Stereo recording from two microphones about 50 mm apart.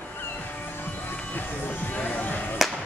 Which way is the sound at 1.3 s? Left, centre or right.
Left.